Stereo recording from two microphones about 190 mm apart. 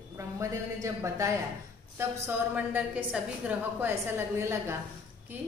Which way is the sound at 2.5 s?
10° right (ahead or behind).